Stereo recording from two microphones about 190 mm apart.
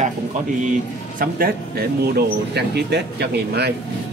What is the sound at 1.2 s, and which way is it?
Speech, 50° right (ahead or behind).